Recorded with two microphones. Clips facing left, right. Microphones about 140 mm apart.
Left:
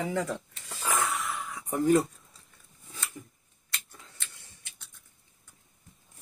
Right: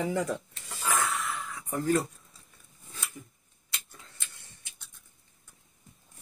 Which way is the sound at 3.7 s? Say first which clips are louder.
Left 2 dB; 10° right (ahead or behind).